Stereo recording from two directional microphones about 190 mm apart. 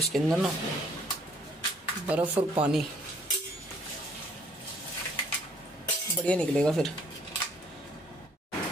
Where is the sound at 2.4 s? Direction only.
25° right (ahead or behind).